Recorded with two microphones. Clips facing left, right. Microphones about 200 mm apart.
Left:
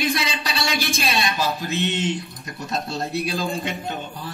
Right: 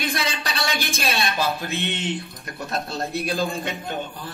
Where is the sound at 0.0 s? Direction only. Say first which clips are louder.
Left 2 dB; 55° right (ahead or behind).